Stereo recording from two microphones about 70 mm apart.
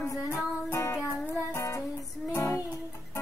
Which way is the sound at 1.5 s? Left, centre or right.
Left.